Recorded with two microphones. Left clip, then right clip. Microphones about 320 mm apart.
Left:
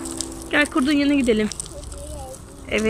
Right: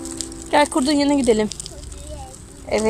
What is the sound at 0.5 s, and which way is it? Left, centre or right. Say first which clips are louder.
Speech: right 3 dB; centre.